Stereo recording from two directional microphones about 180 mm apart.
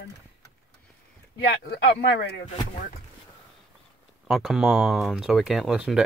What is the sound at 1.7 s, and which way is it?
Speech, 70° left (ahead or behind).